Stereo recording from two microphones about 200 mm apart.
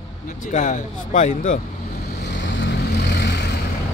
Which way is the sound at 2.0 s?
55° left (ahead or behind).